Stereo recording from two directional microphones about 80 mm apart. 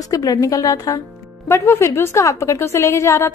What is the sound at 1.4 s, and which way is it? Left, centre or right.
Speech, left.